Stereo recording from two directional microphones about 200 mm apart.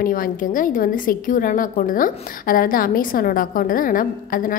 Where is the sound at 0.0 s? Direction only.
45° left (ahead or behind).